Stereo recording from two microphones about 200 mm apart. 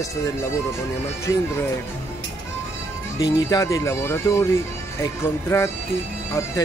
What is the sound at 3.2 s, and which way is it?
Speech, 20° left (ahead or behind).